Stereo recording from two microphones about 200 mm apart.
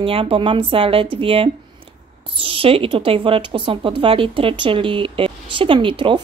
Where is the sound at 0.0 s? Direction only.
30° right (ahead or behind).